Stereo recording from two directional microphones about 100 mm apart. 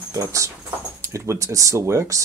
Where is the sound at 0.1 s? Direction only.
30° right (ahead or behind).